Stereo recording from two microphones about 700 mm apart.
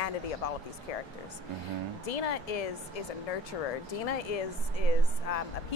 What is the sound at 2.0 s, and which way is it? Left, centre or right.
Speech, left.